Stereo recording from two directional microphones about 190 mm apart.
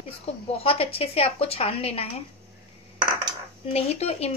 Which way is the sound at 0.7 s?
30° left (ahead or behind).